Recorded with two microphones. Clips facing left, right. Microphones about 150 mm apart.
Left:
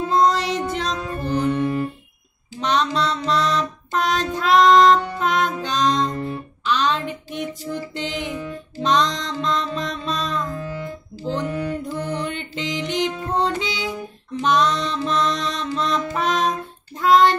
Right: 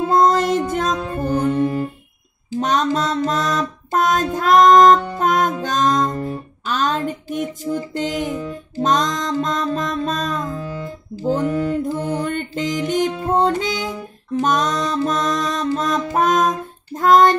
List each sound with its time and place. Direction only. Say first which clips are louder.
0.1 s music: right 3 dB; 50° right (ahead or behind)